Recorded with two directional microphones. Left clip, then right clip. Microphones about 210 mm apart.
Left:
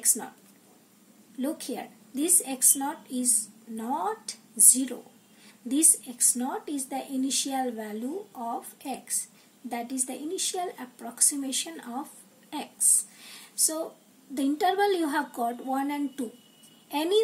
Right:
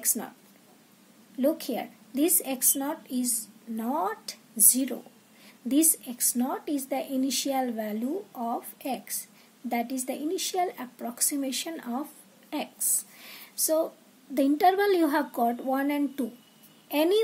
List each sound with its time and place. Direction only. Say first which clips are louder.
1.4 s a woman's voice: right 6 dB; 40° right (ahead or behind)
12.4 s a sound: left 2 dB; 40° right (ahead or behind)
14.3 s a woman's voice: right 4 dB; 40° right (ahead or behind)